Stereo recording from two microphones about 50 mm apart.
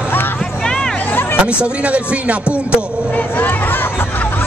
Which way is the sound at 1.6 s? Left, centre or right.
Right.